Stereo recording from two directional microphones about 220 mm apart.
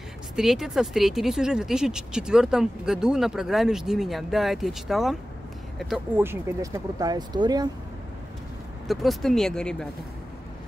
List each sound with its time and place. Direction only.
0.4 s speech: centre (ahead or behind); by 7.7 s 20° right (ahead or behind)
8.8 s speech: centre (ahead or behind)